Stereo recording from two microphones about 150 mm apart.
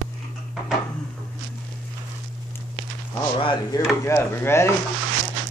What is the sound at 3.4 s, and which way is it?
Speech, 35° left (ahead or behind).